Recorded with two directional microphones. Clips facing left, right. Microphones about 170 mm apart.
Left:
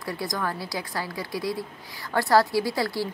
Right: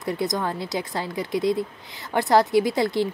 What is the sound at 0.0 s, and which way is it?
Speech, 20° right (ahead or behind).